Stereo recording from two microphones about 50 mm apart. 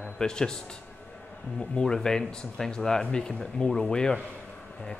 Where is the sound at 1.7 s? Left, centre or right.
Centre.